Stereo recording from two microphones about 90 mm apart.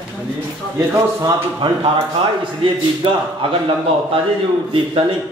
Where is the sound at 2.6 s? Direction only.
75° right (ahead or behind).